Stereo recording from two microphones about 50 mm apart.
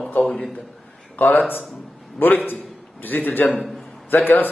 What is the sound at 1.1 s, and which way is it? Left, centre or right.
A man's voice, left.